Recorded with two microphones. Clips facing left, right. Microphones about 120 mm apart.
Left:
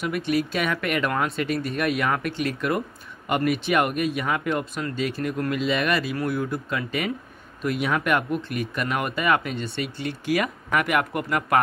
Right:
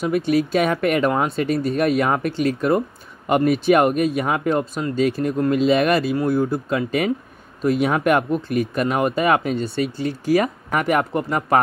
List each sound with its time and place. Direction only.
0.0 s speech: 35° right (ahead or behind)
6.1 s speech: 30° right (ahead or behind)
7.8 s speech: 40° right (ahead or behind)